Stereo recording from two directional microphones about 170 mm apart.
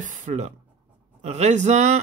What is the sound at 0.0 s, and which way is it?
Speech, 45° right (ahead or behind).